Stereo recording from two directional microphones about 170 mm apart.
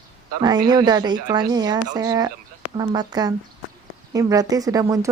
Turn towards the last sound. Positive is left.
turn(degrees=-20)  # may be behind; listen again after turning